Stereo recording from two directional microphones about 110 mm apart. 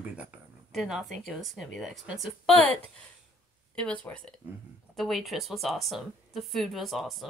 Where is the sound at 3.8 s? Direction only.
10° left (ahead or behind).